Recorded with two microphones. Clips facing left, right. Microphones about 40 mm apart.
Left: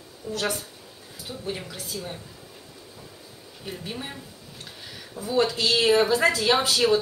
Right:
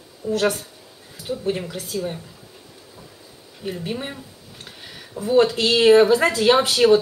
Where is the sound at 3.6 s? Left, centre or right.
Right.